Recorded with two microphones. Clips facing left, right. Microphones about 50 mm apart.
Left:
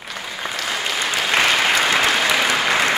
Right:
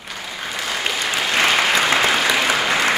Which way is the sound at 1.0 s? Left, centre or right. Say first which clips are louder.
Left 1 dB; centre.